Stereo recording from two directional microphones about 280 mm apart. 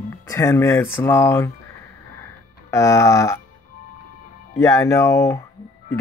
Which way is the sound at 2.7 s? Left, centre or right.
Centre.